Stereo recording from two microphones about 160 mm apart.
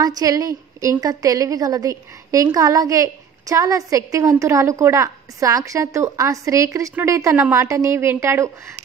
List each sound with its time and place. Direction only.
0.0 s a woman's voice: 20° right (ahead or behind)